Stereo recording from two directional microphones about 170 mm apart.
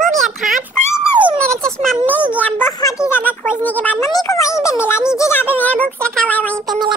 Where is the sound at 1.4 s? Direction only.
5° left (ahead or behind).